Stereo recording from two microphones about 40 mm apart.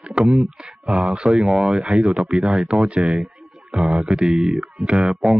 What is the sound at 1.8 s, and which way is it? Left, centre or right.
Speech, right.